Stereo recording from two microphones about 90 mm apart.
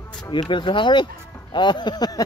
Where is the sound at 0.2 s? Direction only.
60° left (ahead or behind).